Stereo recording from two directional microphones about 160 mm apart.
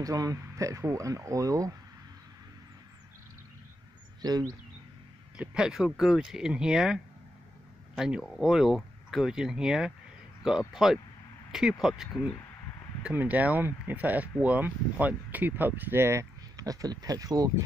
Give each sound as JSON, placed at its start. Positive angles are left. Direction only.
{"t": 0.0, "sound": "speech", "side_deg": -20}
{"t": 4.2, "sound": "speech", "side_deg": -25}
{"t": 5.4, "sound": "speech", "side_deg": -5}
{"t": 13.0, "sound": "speech", "side_deg": -10}